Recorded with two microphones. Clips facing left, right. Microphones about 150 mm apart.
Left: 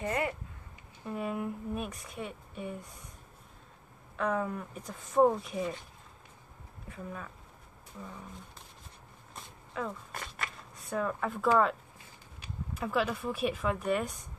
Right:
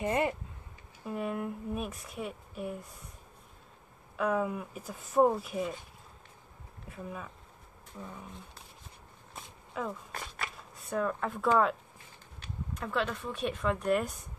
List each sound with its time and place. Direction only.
0.0 s speech: 25° right (ahead or behind)
1.0 s a woman's voice: centre (ahead or behind)
4.2 s a woman's voice: 5° right (ahead or behind)
6.9 s a woman's voice: 5° right (ahead or behind)
9.3 s a sound: centre (ahead or behind)
12.4 s speech: 5° left (ahead or behind)